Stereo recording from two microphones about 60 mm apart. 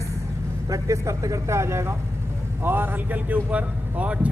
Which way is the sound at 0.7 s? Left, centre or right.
Right.